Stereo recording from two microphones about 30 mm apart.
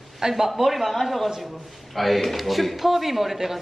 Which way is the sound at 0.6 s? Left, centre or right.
Centre.